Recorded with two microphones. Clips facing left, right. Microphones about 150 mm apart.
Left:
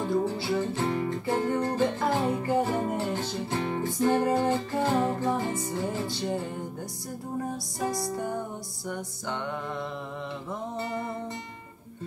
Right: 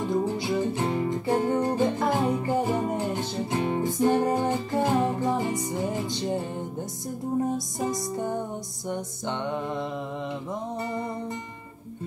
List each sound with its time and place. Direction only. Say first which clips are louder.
0.1 s music: right 1 dB; 20° right (ahead or behind)
7.5 s music: right 2 dB; 20° right (ahead or behind)